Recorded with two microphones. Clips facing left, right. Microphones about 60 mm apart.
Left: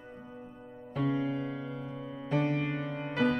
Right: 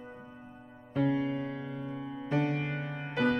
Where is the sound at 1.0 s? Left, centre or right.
Centre.